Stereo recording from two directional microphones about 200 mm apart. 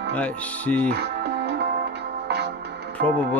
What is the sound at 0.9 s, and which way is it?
Music, 55° right (ahead or behind).